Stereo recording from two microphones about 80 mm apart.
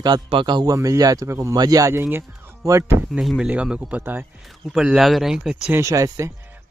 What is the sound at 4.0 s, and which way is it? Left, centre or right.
Speech, right.